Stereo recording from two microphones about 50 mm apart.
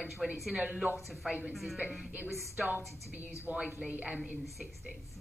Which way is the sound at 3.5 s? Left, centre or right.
Right.